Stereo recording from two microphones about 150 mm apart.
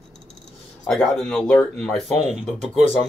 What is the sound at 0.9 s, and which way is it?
Speech, 5° left (ahead or behind).